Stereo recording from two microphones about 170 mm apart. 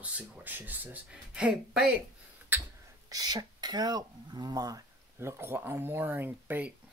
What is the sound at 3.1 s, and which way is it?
Speech, 25° right (ahead or behind).